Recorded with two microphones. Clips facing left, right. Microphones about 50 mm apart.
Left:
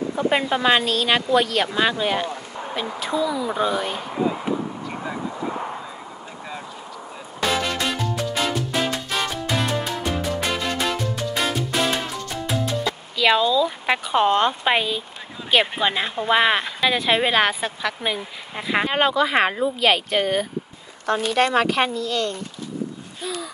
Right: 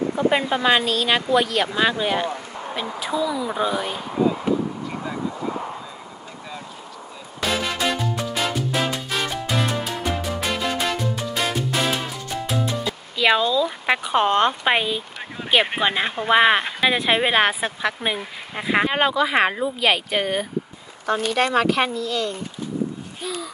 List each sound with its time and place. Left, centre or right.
0.3 s speech: centre
7.4 s music: centre
15.8 s speech: centre